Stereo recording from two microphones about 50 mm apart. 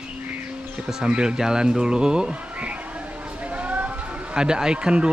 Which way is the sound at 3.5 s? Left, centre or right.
Right.